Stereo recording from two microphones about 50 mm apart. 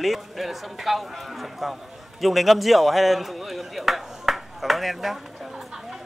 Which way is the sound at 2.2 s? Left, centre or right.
Centre.